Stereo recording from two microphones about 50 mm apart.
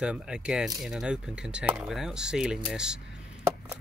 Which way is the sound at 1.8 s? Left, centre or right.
Centre.